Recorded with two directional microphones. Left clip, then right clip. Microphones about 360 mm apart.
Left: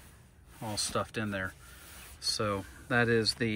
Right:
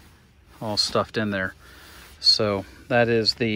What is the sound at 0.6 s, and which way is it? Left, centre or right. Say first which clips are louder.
Speech: right 11 dB; centre.